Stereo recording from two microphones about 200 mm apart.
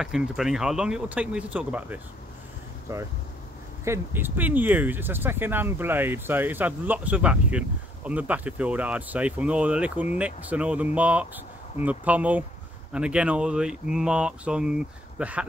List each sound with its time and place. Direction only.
0.0 s speech: centre (ahead or behind)